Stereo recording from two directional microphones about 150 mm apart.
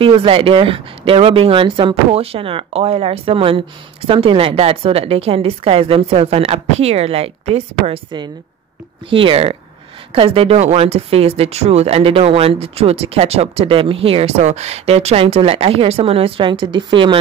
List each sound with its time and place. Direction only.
0.0 s speech: 35° right (ahead or behind)
9.1 s speech: 35° right (ahead or behind)